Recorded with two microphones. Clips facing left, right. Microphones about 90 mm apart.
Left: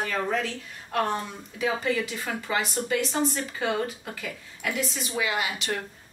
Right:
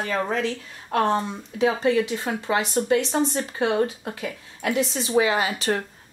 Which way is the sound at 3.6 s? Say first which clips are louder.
Right 6 dB; 20° right (ahead or behind).